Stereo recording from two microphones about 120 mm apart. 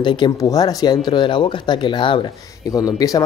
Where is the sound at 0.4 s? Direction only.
30° left (ahead or behind).